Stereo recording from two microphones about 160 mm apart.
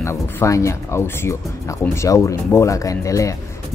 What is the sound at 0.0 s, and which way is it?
Speech, 15° left (ahead or behind).